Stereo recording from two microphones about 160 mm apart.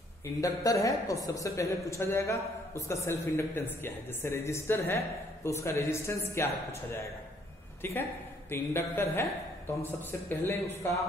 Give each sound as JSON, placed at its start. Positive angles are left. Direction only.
{"t": 0.4, "sound": "a woman's voice", "side_deg": 20}
{"t": 10.4, "sound": "speech", "side_deg": 15}